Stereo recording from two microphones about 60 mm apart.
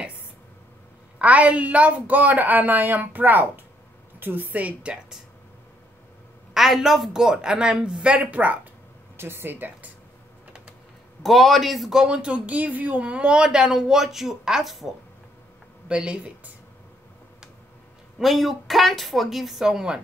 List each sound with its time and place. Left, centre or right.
1.2 s a woman's voice: right
6.5 s speech: centre; by 8.5 s right
9.1 s speech: right
11.2 s speech: centre
15.9 s speech: centre
18.2 s speech: centre